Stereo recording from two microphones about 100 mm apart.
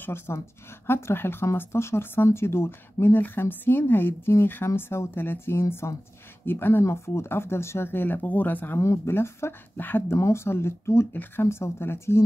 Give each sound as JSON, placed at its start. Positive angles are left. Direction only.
{"t": 0.0, "sound": "speech", "side_deg": 25}
{"t": 8.7, "sound": "speech", "side_deg": 30}